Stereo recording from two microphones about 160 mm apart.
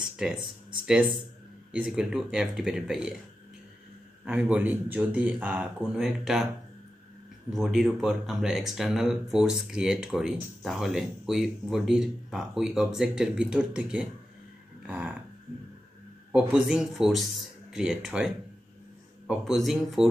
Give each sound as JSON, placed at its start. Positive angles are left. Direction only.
{"t": 0.0, "sound": "speech", "side_deg": -5}
{"t": 4.2, "sound": "speech", "side_deg": -5}
{"t": 16.3, "sound": "speech", "side_deg": -10}